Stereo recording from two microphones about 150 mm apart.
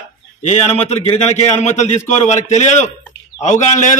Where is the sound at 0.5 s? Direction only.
45° left (ahead or behind).